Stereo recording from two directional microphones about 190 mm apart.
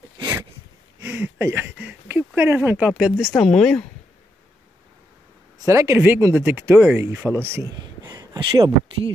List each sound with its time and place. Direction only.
0.2 s a sound: 15° right (ahead or behind)
3.0 s speech: 5° right (ahead or behind)
5.7 s speech: 15° right (ahead or behind)